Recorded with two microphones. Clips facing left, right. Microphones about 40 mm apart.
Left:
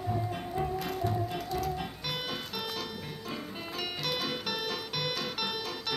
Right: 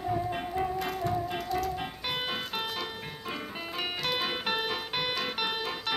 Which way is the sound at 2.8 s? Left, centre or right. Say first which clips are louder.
Right 2 dB; right.